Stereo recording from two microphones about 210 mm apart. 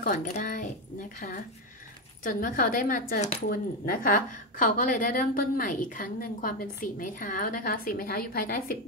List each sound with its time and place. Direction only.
0.0 s speech: 40° left (ahead or behind)
2.2 s a woman's voice: 40° left (ahead or behind)